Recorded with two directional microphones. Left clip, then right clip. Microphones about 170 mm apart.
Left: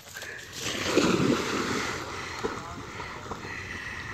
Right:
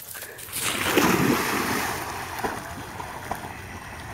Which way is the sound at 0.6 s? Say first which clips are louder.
Right 5 dB; 10° right (ahead or behind).